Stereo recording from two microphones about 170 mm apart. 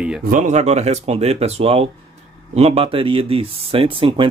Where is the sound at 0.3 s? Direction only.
45° right (ahead or behind).